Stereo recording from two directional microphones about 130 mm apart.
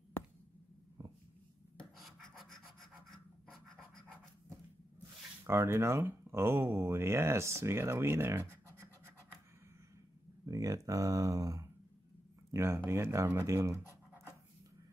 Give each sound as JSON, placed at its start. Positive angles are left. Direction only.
{"t": 1.8, "sound": "a sound", "side_deg": 0}
{"t": 5.5, "sound": "speech", "side_deg": -20}
{"t": 10.4, "sound": "speech", "side_deg": -25}